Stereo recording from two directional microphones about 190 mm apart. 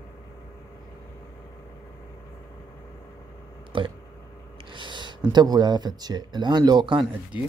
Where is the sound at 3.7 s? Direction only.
25° right (ahead or behind).